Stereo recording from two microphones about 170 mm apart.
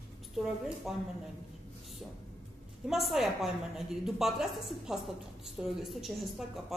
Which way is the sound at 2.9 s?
Centre (ahead or behind).